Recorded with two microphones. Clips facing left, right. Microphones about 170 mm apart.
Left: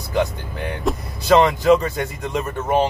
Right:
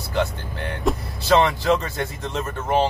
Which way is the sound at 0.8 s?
Centre (ahead or behind).